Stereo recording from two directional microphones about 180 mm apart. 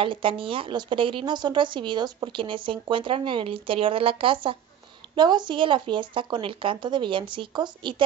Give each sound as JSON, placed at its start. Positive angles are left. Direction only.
{"t": 0.0, "sound": "a woman's voice", "side_deg": -30}